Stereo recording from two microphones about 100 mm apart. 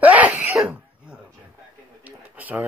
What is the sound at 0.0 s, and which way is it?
Throat clearing, 15° right (ahead or behind).